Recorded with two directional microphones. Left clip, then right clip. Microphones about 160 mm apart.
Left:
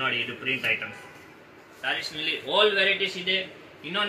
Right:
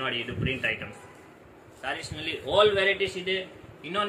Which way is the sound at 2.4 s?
10° right (ahead or behind).